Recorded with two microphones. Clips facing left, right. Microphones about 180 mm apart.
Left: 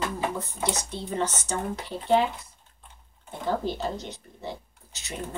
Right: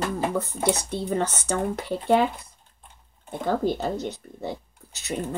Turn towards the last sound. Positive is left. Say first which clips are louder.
# right 2 dB
turn(degrees=-60)  # may be behind; listen again after turning